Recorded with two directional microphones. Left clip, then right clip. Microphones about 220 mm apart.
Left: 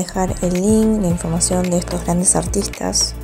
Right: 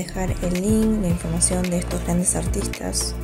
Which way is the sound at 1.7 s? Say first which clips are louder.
Left 6 dB; 15° left (ahead or behind).